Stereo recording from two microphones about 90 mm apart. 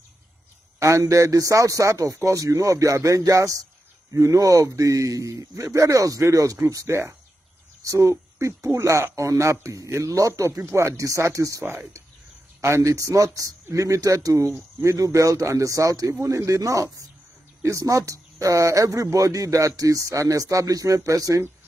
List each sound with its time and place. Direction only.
0.7 s speech: 35° right (ahead or behind)